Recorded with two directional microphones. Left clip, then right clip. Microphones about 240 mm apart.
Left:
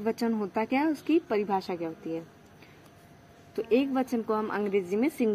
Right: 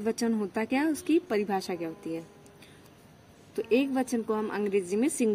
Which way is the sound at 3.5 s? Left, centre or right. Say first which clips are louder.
Even; centre.